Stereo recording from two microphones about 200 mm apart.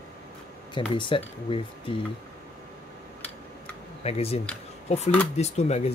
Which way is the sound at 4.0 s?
30° left (ahead or behind).